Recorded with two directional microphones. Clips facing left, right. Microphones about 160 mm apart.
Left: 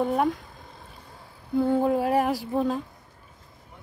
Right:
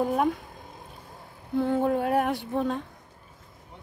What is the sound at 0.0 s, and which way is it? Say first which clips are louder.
Speech: left 1 dB; centre (ahead or behind).